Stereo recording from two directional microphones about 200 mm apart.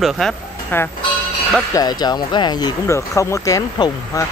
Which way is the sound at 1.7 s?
20° left (ahead or behind).